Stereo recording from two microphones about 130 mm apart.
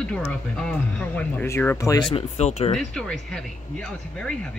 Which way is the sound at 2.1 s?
55° left (ahead or behind).